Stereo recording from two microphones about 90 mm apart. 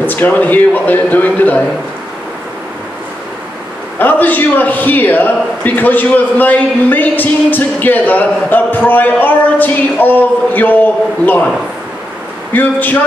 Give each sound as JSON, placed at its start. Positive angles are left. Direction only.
{"t": 0.0, "sound": "a man's voice", "side_deg": 20}
{"t": 4.0, "sound": "a man's voice", "side_deg": 20}
{"t": 12.5, "sound": "a man's voice", "side_deg": 20}